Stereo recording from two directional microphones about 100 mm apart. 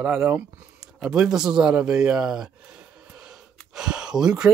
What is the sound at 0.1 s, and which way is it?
Speech, 10° right (ahead or behind).